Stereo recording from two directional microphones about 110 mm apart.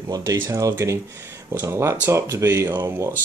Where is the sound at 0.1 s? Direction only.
30° right (ahead or behind).